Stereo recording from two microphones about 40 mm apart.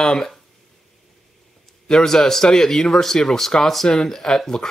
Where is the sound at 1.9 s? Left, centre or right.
Centre.